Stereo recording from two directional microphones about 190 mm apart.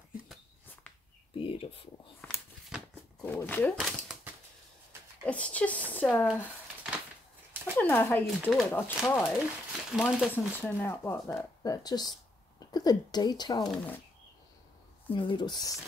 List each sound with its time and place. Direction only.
1.3 s a sound: 30° left (ahead or behind)
2.2 s a sound: 10° left (ahead or behind)
3.2 s speech: 10° left (ahead or behind)
3.7 s a sound: 5° right (ahead or behind)
5.2 s speech: 5° left (ahead or behind)
7.7 s speech: 10° left (ahead or behind)
8.6 s speech: 10° left (ahead or behind)
9.4 s speech: centre (ahead or behind)
10.3 s speech: 10° left (ahead or behind)
11.6 s speech: 20° left (ahead or behind)
13.7 s speech: 10° left (ahead or behind)
15.0 s speech: 25° left (ahead or behind)